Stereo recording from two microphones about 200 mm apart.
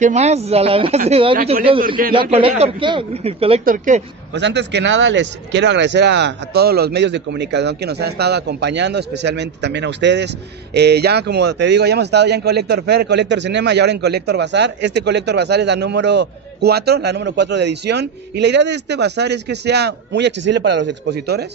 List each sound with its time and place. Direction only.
0.0 s a man's voice: 35° right (ahead or behind)
3.6 s speech: 40° right (ahead or behind)
4.4 s speech: 60° right (ahead or behind)